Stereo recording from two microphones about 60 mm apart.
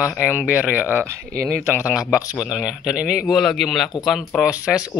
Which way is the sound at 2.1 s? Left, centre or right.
Centre.